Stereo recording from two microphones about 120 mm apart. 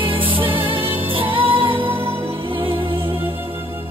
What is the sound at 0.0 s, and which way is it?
Music, 50° right (ahead or behind).